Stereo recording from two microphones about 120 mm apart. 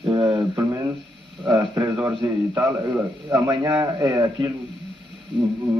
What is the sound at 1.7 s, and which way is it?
A man's voice, 20° right (ahead or behind).